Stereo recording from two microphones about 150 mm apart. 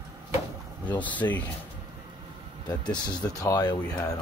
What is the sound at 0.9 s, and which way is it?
Speech, 10° left (ahead or behind).